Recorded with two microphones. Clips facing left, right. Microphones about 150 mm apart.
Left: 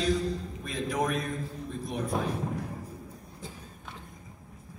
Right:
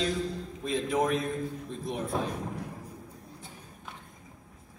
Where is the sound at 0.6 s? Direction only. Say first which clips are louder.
Right 4 dB; 25° right (ahead or behind).